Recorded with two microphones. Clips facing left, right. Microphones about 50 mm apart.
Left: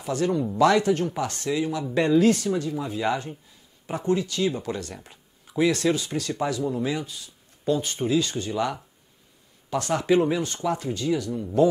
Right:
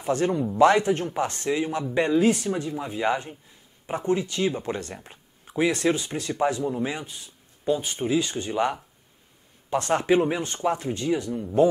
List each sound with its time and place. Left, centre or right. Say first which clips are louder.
0.0 s speech: right 1 dB; right
2.0 s speech: left 2 dB; centre
7.7 s speech: left 1 dB; centre